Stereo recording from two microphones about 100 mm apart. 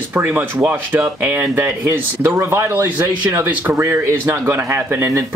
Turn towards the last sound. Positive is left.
turn(degrees=-25)  # may be behind; listen again after turning